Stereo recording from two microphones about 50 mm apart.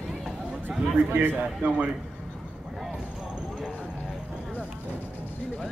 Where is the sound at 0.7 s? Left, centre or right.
Right.